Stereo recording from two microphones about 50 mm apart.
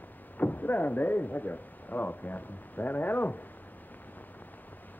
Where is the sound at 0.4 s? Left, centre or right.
Left.